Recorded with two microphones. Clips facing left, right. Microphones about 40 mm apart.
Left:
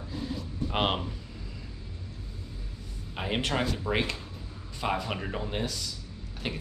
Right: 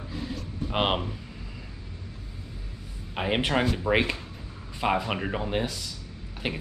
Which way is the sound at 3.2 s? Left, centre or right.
Centre.